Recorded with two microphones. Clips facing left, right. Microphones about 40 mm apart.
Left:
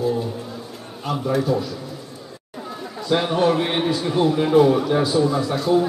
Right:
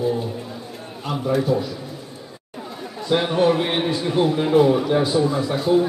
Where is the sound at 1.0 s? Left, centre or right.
Centre.